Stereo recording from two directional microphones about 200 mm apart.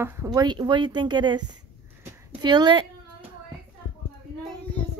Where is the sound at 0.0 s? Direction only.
15° right (ahead or behind).